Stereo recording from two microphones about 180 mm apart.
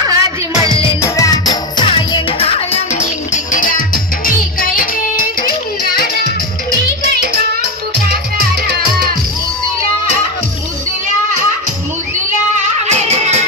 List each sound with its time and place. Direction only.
0.1 s music: 20° right (ahead or behind)
1.0 s music: 15° left (ahead or behind); by 5.5 s 50° left (ahead or behind)
12.8 s music: 40° right (ahead or behind)